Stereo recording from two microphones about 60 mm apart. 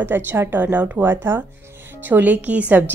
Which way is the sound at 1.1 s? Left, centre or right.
Right.